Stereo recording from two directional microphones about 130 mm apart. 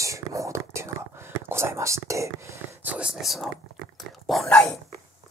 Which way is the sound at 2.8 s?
10° right (ahead or behind).